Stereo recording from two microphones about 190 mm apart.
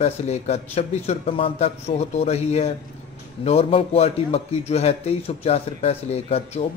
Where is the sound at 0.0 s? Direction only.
35° left (ahead or behind).